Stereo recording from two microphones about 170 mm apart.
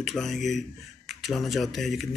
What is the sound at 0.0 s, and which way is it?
Speech, centre (ahead or behind).